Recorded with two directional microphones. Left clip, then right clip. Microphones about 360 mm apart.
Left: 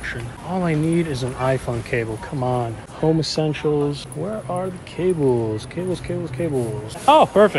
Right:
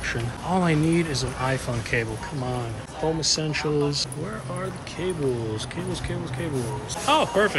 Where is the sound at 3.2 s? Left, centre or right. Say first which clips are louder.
Left 2 dB; centre.